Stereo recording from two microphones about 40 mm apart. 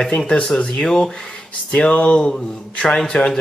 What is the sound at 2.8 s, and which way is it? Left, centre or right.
Speech, centre.